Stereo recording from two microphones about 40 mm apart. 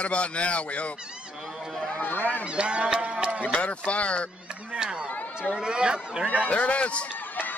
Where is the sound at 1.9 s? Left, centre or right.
Left.